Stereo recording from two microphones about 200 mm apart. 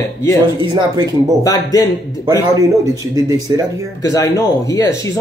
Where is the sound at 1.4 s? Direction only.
20° left (ahead or behind).